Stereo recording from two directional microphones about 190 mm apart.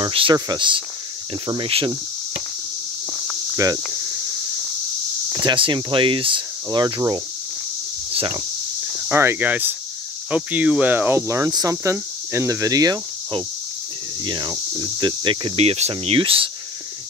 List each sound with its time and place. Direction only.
0.0 s speech: 25° right (ahead or behind)
3.5 s speech: 20° right (ahead or behind)
5.3 s speech: 20° right (ahead or behind)
8.9 s speech: 10° right (ahead or behind); by 16.4 s 30° right (ahead or behind)